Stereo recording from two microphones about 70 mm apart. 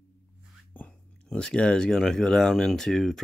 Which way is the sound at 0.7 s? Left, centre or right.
Left.